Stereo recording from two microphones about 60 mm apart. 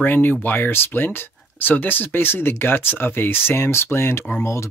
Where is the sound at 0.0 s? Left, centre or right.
Left.